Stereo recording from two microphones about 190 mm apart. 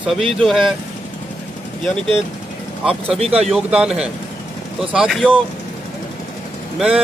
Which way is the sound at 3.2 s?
30° right (ahead or behind).